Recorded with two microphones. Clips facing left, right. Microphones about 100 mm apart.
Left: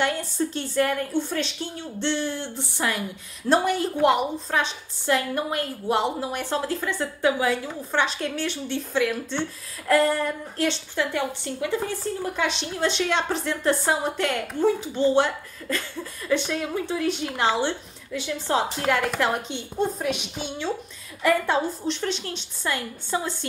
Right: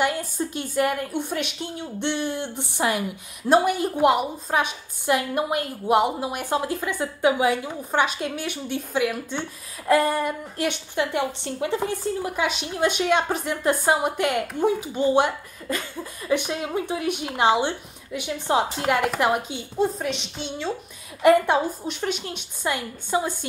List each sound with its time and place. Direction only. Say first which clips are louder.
0.0 s a woman's voice: even; 10° right (ahead or behind)
21.2 s a woman's voice: right 5 dB; 20° right (ahead or behind)
21.8 s a woman's voice: left 1 dB; 10° right (ahead or behind)